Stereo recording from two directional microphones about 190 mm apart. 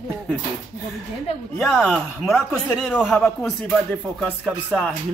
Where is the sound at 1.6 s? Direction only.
Centre (ahead or behind).